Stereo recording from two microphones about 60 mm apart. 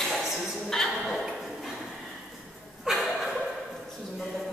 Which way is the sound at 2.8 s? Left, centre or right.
Centre.